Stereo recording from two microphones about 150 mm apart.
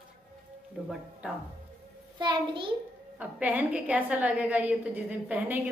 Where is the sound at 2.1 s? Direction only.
30° right (ahead or behind).